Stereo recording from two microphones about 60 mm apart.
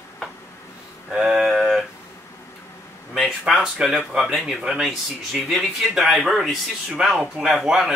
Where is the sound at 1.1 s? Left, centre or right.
Centre.